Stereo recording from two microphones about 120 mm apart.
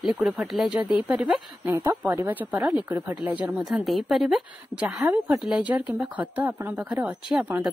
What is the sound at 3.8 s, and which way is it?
A woman's voice, centre (ahead or behind).